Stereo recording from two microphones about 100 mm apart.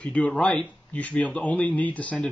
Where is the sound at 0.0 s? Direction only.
15° left (ahead or behind).